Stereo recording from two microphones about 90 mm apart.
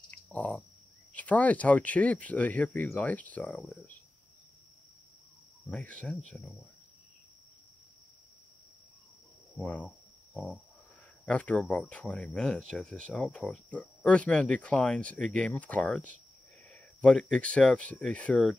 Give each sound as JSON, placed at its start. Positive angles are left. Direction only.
{"t": 0.1, "sound": "a sound", "side_deg": 15}
{"t": 1.1, "sound": "speech", "side_deg": 15}
{"t": 5.7, "sound": "speech", "side_deg": 15}
{"t": 6.3, "sound": "cricket", "side_deg": 0}
{"t": 9.6, "sound": "speech", "side_deg": 15}
{"t": 9.8, "sound": "cricket", "side_deg": 0}
{"t": 11.2, "sound": "speech", "side_deg": 15}